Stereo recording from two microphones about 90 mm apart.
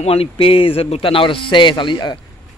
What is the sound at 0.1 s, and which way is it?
A man's voice, 90° left.